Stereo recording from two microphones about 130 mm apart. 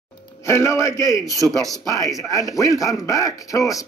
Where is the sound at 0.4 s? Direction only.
25° left (ahead or behind).